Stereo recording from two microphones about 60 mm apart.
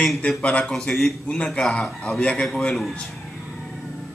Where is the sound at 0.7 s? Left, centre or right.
Centre.